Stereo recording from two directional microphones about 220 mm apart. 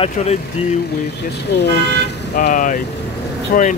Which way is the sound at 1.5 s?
45° left (ahead or behind).